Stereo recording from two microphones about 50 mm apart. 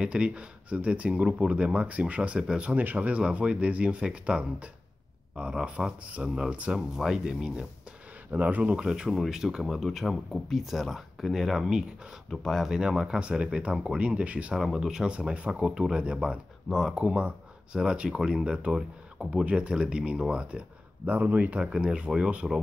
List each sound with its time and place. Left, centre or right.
0.0 s speech: right
2.8 s speech: right; by 6.5 s centre
6.5 s speech: right
8.3 s speech: right
8.7 s speech: centre
9.1 s speech: centre
12.6 s speech: centre
14.5 s speech: centre
15.1 s speech: right
16.6 s speech: centre
16.9 s speech: right